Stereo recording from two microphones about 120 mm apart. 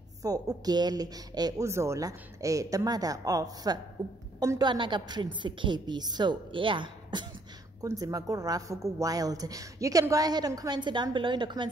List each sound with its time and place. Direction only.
0.2 s a woman's voice: 30° right (ahead or behind)
7.8 s a woman's voice: 30° right (ahead or behind)